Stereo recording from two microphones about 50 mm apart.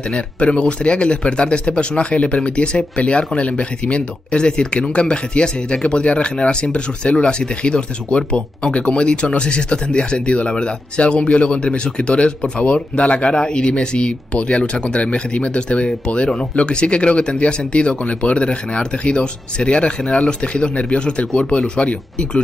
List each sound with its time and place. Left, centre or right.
0.1 s speech: left